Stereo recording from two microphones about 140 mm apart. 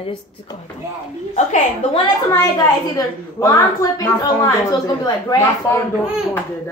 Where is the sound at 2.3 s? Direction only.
25° left (ahead or behind).